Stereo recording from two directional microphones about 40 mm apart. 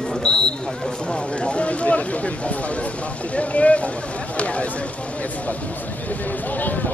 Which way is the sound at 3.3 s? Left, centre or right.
Left.